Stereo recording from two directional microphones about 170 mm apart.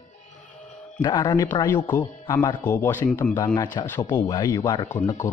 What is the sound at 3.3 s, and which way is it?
A man's voice, 20° left (ahead or behind).